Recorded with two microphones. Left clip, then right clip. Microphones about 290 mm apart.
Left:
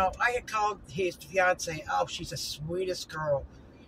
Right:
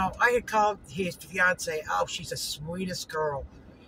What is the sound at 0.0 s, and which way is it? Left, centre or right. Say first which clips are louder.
Speech: right 3 dB; centre.